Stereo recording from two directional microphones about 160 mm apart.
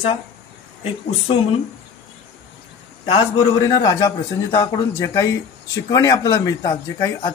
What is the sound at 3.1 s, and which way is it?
A man's voice, 30° left (ahead or behind).